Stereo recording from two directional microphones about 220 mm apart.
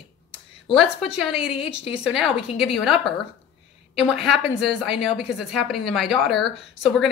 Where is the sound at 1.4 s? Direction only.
25° left (ahead or behind).